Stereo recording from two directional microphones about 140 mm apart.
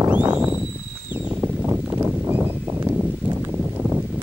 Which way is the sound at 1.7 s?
15° right (ahead or behind).